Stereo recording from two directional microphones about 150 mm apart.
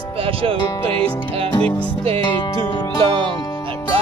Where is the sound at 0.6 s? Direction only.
15° left (ahead or behind).